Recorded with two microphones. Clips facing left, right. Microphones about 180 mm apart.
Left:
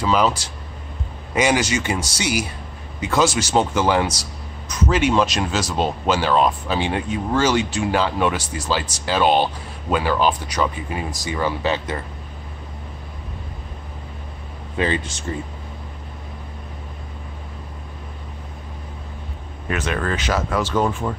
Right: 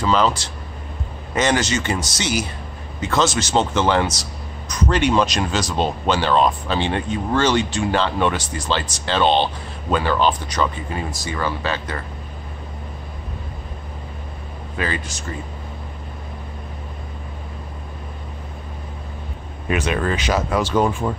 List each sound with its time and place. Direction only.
0.0 s speech: 10° left (ahead or behind)
14.8 s speech: 25° left (ahead or behind)
19.7 s speech: 15° right (ahead or behind)